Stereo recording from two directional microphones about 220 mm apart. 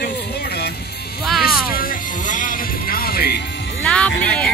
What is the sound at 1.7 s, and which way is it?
Music, 40° left (ahead or behind).